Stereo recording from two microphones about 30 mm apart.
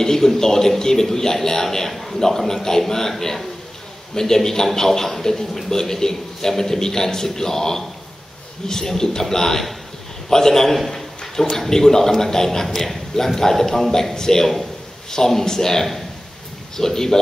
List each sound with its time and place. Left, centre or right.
0.0 s a sound: centre
0.4 s a man's voice: centre
1.9 s a man's voice: centre
2.1 s a man's voice: centre
10.9 s a sound: centre
11.5 s a man's voice: centre